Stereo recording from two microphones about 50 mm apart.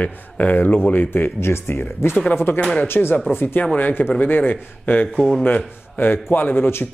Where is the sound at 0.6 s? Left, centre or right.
Left.